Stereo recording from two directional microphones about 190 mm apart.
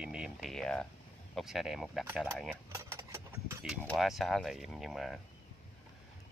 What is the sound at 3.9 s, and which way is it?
Speech, centre (ahead or behind).